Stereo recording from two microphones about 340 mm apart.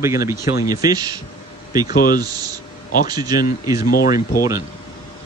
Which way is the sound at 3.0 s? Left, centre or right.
Centre.